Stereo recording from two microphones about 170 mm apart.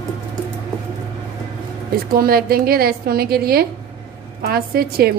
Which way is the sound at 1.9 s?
60° right (ahead or behind).